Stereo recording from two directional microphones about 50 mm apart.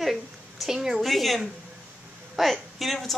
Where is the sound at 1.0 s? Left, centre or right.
Centre.